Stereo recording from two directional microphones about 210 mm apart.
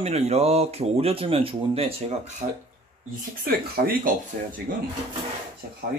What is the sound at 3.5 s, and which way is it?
Speech, 45° right (ahead or behind).